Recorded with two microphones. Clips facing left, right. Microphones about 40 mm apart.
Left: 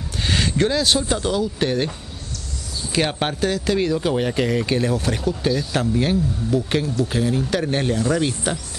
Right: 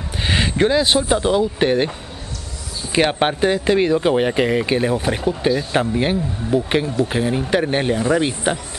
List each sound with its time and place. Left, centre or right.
0.2 s speech: right